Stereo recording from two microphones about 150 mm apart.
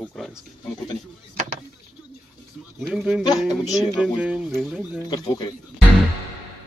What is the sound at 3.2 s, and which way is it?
Speech, 25° left (ahead or behind).